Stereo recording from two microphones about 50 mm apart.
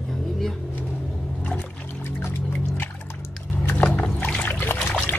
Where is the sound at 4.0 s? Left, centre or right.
Left.